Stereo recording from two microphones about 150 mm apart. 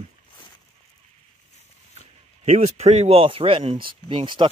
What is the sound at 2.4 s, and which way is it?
Speech, 50° right (ahead or behind).